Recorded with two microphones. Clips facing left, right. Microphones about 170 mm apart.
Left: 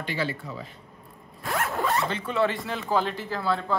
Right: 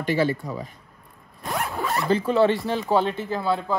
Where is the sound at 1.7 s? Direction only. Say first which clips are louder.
Left 1 dB; centre (ahead or behind).